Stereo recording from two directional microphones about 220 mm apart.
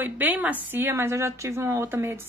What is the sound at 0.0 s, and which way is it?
Speech, 10° right (ahead or behind).